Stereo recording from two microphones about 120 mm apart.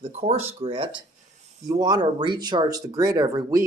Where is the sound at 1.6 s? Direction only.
35° right (ahead or behind).